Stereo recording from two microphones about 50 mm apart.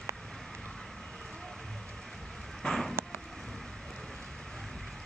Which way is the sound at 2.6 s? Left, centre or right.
Centre.